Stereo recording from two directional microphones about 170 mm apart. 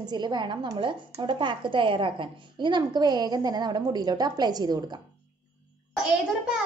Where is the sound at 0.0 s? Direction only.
25° right (ahead or behind).